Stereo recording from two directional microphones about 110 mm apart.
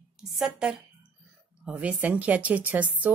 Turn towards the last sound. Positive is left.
turn(degrees=-15)  # may be behind; listen again after turning